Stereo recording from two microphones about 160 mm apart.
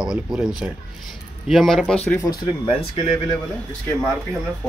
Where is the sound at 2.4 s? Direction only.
35° left (ahead or behind).